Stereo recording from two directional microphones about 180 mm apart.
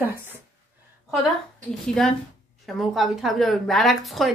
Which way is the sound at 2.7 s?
Centre (ahead or behind).